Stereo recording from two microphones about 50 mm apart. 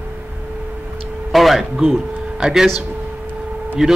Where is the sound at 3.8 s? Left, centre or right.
Centre.